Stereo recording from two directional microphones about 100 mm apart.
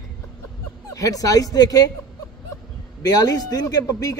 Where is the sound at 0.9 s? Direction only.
35° left (ahead or behind).